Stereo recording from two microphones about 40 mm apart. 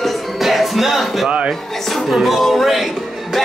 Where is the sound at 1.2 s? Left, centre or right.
Right.